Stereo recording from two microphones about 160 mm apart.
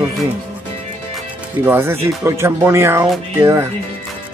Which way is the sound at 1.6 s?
15° right (ahead or behind).